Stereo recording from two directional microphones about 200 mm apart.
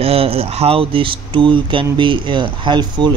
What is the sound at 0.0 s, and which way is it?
Speech, 30° right (ahead or behind).